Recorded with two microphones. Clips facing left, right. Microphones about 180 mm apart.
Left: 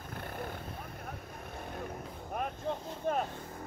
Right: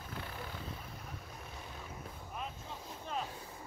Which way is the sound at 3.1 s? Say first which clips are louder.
Left 9 dB; 50° left (ahead or behind).